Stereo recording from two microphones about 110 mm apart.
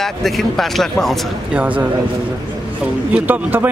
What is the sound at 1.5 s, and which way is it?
Speech, 15° right (ahead or behind).